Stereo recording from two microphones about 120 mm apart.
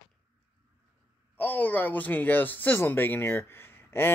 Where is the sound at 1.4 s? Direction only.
15° left (ahead or behind).